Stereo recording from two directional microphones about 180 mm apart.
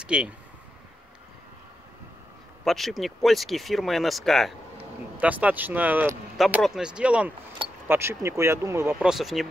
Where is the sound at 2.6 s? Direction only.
Centre (ahead or behind).